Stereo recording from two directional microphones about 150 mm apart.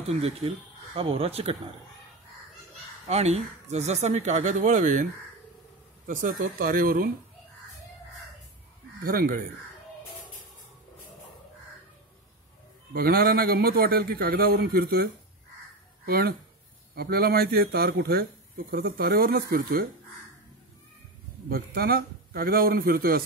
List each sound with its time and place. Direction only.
0.1 s speech: 45° right (ahead or behind)
3.1 s speech: 45° right (ahead or behind)
6.0 s speech: 70° right (ahead or behind)
9.0 s speech: 75° right (ahead or behind)
12.9 s a man's voice: 90° right
16.1 s a man's voice: 90° right
21.5 s a man's voice: 85° right